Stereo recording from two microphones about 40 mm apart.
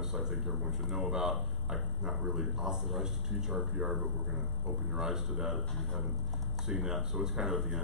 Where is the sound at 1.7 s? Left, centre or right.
Centre.